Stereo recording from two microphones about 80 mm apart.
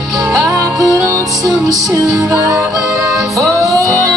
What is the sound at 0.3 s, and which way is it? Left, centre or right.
Music, right.